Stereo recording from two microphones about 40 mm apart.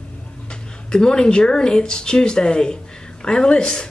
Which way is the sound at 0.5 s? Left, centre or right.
Left.